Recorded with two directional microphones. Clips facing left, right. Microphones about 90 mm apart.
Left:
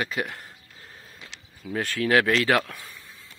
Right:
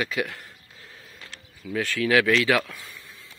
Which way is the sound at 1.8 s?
45° left (ahead or behind).